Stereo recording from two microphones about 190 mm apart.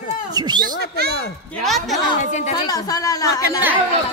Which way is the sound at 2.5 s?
20° left (ahead or behind).